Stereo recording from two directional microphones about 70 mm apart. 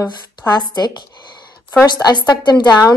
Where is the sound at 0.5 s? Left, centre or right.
Left.